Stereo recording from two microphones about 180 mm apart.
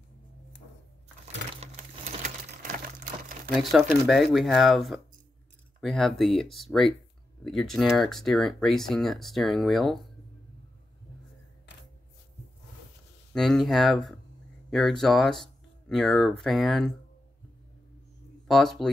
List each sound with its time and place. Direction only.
1.6 s a sound: 45° right (ahead or behind)
4.1 s speech: centre (ahead or behind)
13.3 s speech: centre (ahead or behind)
18.5 s speech: centre (ahead or behind)